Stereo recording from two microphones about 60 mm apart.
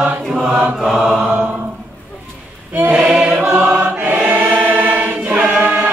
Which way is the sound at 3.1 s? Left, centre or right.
Centre.